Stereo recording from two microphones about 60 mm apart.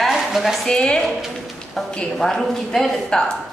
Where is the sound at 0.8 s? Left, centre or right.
Centre.